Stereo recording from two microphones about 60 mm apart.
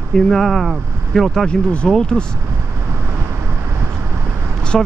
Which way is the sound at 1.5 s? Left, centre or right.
Centre.